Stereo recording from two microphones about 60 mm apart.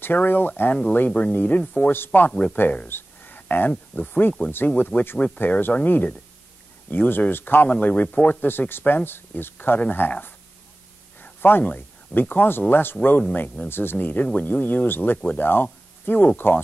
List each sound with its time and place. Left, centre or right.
0.0 s speech: left
1.6 s speech: centre
1.9 s speech: left
2.9 s a sound: left
3.9 s speech: centre
4.6 s speech: left
11.1 s a sound: left
11.6 s speech: left